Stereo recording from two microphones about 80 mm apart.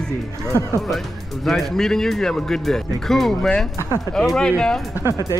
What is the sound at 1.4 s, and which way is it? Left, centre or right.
Speech, centre.